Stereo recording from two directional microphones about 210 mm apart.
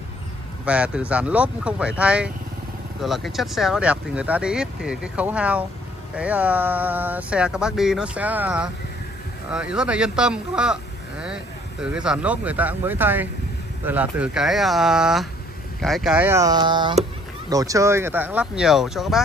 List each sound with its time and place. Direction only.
0.7 s speech: 5° right (ahead or behind)